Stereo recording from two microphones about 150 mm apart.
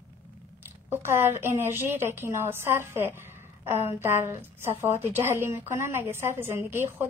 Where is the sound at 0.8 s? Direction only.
15° right (ahead or behind).